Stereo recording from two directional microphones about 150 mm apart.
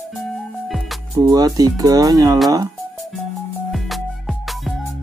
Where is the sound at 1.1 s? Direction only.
25° right (ahead or behind).